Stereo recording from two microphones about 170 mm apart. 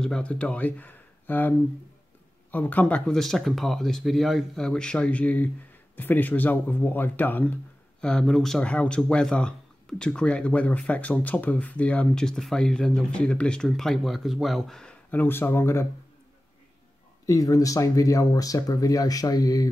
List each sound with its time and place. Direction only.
0.0 s speech: 5° left (ahead or behind)
2.5 s speech: 10° left (ahead or behind)
17.3 s speech: 20° left (ahead or behind)